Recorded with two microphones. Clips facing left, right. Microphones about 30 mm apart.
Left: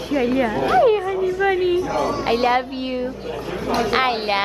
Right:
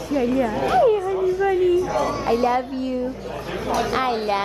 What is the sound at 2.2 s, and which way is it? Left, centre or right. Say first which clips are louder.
Speech: left 2 dB; left.